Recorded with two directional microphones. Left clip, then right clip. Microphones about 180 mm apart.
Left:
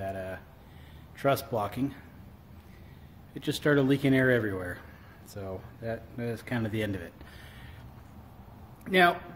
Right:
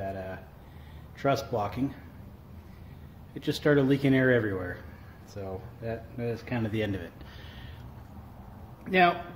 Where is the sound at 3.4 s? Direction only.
35° left (ahead or behind).